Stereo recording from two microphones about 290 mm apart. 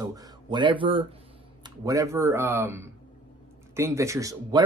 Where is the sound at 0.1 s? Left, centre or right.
Centre.